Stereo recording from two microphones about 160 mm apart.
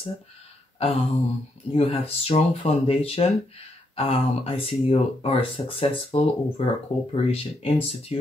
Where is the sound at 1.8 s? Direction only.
35° left (ahead or behind).